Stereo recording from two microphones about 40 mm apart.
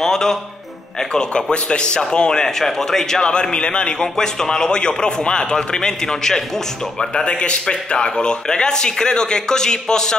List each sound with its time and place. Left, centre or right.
0.0 s speech: centre
3.5 s a man's voice: left
7.2 s a man's voice: left